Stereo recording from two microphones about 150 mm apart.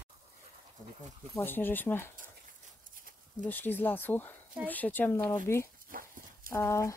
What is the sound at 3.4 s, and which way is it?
Speech, 10° left (ahead or behind).